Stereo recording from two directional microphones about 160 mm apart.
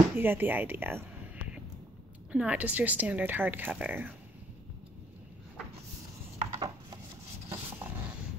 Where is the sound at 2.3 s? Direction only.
10° right (ahead or behind).